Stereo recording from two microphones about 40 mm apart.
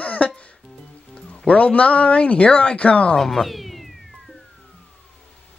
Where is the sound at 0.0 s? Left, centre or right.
Left.